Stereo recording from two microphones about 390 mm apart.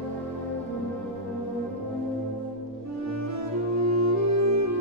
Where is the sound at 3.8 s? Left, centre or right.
Right.